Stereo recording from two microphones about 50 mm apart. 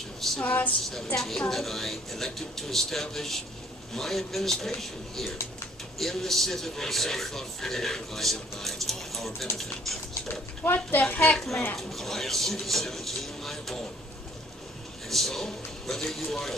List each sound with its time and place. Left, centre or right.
0.4 s a sound: left
1.1 s speech: centre
10.6 s a woman's voice: left
11.3 s speech: centre
15.0 s speech: centre